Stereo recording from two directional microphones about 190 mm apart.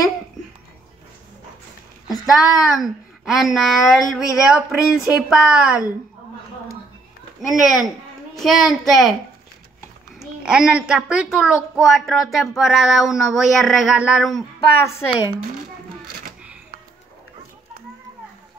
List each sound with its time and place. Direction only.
2.3 s a child's voice: centre (ahead or behind)
7.4 s a child's voice: centre (ahead or behind)
10.1 s a child's voice: 5° right (ahead or behind)
14.3 s a woman's voice: 15° left (ahead or behind)